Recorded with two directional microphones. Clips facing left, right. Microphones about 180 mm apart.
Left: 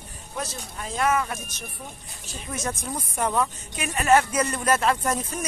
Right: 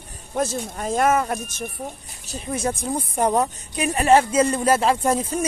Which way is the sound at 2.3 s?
35° right (ahead or behind).